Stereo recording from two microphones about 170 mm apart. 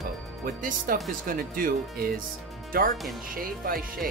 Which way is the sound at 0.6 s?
50° right (ahead or behind).